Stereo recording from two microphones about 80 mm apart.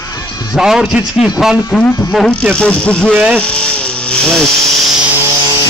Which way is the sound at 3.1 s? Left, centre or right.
Centre.